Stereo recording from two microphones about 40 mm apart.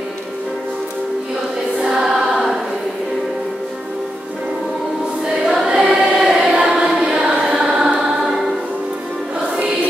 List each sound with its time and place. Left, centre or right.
1.8 s choir: centre
5.2 s choir: centre
5.8 s choir: centre